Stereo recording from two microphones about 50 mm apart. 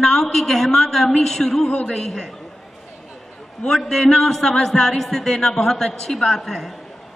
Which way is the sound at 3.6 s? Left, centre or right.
Centre.